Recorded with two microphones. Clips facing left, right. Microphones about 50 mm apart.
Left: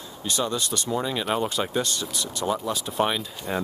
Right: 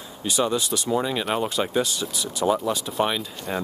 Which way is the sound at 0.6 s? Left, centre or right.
Centre.